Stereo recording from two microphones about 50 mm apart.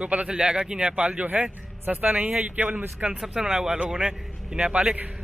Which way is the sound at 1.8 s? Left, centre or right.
Right.